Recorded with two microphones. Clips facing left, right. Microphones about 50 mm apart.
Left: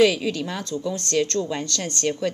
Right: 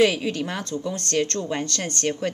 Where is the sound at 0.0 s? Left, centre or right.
Right.